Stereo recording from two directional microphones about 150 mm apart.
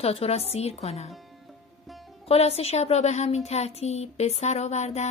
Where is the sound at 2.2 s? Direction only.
40° left (ahead or behind).